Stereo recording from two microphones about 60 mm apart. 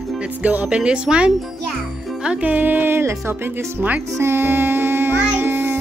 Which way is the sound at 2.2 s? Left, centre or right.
Right.